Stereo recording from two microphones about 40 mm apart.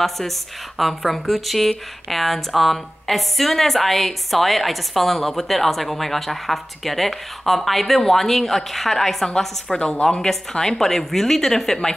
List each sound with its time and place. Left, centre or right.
0.0 s a woman's voice: centre
9.8 s a woman's voice: left
10.2 s a woman's voice: centre